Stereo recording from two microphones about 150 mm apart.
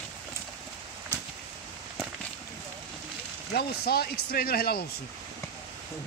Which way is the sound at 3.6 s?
90° left.